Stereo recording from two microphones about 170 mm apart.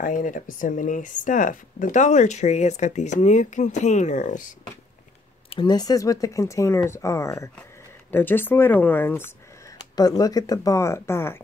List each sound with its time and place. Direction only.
0.0 s speech: 50° left (ahead or behind)
5.5 s speech: 25° left (ahead or behind)
9.9 s speech: 20° left (ahead or behind)